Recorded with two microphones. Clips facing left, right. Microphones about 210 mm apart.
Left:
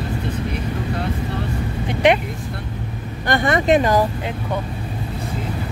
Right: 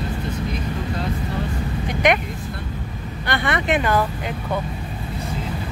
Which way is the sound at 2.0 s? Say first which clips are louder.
Left 3 dB; 30° left (ahead or behind).